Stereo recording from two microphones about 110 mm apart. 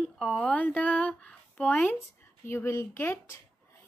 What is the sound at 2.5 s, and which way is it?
Speech, 25° left (ahead or behind).